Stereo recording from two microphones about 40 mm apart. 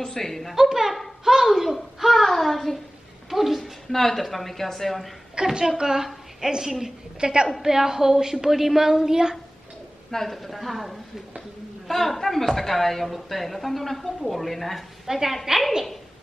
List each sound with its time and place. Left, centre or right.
0.0 s a woman's voice: centre
0.6 s speech: centre
1.2 s a sound: centre
2.2 s speech: centre
3.3 s a sound: centre
4.0 s a woman's voice: centre
5.3 s a woman's voice: centre
7.2 s a woman's voice: right
10.1 s a woman's voice: centre